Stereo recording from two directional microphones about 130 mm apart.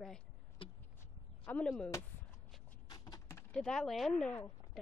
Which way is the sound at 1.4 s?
10° left (ahead or behind).